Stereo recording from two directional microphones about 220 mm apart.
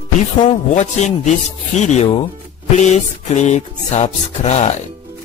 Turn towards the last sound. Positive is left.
turn(degrees=30)  # may be behind; listen again after turning